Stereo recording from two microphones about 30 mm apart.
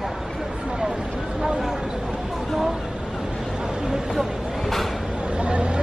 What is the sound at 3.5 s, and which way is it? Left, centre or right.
Vehicle, right.